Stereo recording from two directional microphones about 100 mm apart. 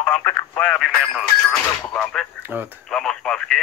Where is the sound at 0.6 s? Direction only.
5° left (ahead or behind).